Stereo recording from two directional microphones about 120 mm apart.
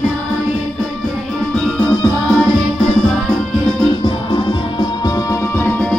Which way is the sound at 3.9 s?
40° left (ahead or behind).